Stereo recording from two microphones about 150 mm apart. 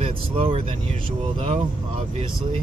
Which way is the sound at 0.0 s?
40° right (ahead or behind).